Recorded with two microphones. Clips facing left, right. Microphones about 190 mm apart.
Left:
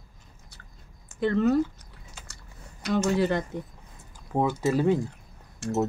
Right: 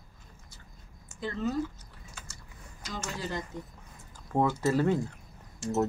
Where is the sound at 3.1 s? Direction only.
65° left (ahead or behind).